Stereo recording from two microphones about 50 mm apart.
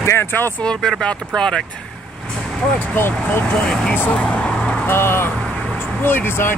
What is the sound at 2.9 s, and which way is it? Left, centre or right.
Speech, left.